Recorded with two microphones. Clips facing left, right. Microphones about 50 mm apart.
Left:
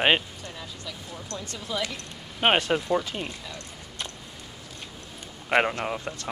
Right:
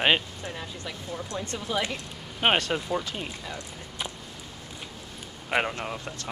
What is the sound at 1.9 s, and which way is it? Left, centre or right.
Speech, centre.